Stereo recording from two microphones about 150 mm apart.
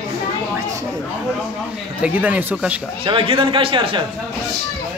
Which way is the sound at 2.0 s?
10° right (ahead or behind).